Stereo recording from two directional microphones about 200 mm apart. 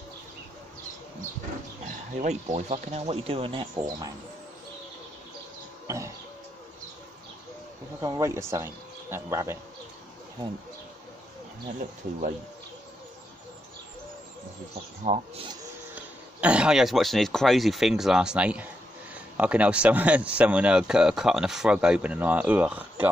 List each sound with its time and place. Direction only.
2.1 s speech: 35° right (ahead or behind); by 4.1 s 20° right (ahead or behind)
5.9 s a sound: 15° right (ahead or behind)
8.0 s speech: 15° right (ahead or behind)
15.1 s speech: 40° right (ahead or behind)
15.9 s speech: 5° right (ahead or behind)